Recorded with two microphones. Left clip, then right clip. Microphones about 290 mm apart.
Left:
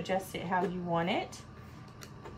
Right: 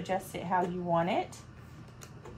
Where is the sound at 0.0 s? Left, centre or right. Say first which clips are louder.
Even; centre.